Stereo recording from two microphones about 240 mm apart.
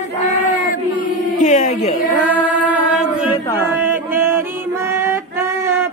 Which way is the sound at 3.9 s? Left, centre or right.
Centre.